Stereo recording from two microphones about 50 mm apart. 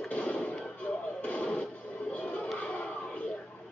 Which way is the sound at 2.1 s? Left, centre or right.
Left.